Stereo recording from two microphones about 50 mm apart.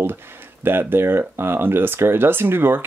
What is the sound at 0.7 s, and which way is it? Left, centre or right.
Speech, right.